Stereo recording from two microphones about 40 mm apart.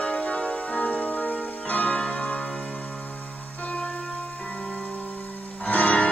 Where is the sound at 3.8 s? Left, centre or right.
Left.